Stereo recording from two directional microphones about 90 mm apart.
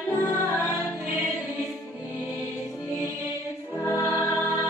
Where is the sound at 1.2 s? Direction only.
15° right (ahead or behind).